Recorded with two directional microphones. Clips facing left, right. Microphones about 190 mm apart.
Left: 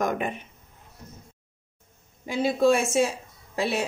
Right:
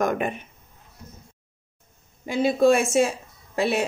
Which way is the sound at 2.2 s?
55° right (ahead or behind).